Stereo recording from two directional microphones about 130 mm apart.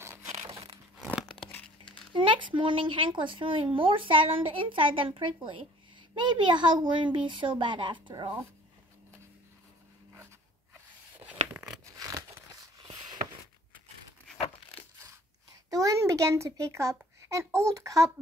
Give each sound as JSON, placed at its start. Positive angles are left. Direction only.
{"t": 0.9, "sound": "tearing", "side_deg": -5}
{"t": 1.4, "sound": "tearing", "side_deg": 10}
{"t": 2.1, "sound": "speech", "side_deg": -40}
{"t": 11.5, "sound": "tearing", "side_deg": -5}
{"t": 15.7, "sound": "a child's voice", "side_deg": -25}